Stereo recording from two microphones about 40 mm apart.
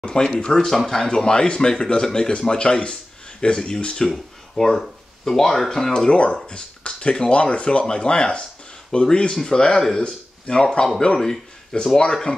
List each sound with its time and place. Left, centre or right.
0.4 s speech: left
4.1 s speech: centre
6.0 s speech: left